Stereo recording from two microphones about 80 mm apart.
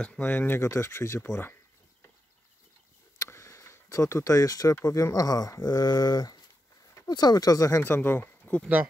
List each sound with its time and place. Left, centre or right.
0.0 s speech: centre
0.6 s speech: left
3.2 s a sound: left
4.8 s speech: left
7.8 s speech: left